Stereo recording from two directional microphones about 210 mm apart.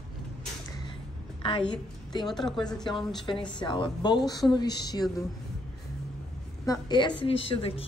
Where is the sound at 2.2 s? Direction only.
Centre (ahead or behind).